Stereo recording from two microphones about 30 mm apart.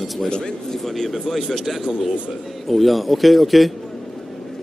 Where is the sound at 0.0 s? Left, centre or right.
Centre.